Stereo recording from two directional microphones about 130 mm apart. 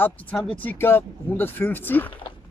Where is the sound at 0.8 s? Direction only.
20° left (ahead or behind).